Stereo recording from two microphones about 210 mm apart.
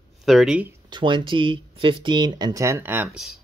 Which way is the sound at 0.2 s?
Centre (ahead or behind).